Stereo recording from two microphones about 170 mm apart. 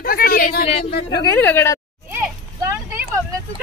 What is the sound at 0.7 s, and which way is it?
Speech, 35° left (ahead or behind).